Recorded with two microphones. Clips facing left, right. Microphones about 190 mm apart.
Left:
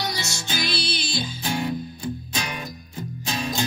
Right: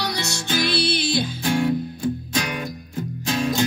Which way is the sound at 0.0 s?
60° right (ahead or behind).